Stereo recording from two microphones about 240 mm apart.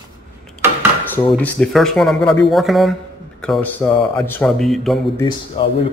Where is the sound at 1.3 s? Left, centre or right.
Centre.